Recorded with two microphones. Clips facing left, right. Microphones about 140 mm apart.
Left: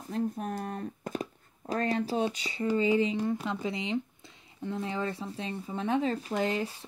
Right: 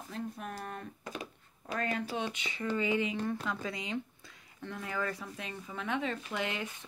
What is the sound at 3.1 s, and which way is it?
Speech, 10° left (ahead or behind).